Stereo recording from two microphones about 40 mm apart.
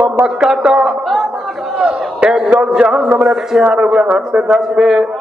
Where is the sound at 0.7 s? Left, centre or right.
Centre.